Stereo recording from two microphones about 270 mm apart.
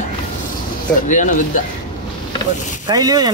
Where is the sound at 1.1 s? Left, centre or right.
Left.